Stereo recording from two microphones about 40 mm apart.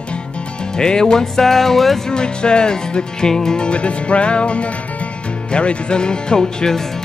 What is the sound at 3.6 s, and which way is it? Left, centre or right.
Music, left.